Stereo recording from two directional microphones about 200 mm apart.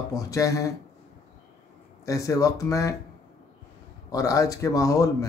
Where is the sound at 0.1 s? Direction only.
15° left (ahead or behind).